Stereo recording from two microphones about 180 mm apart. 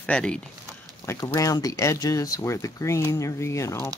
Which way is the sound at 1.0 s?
15° left (ahead or behind).